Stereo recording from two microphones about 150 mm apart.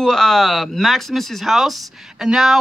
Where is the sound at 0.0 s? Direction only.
5° left (ahead or behind).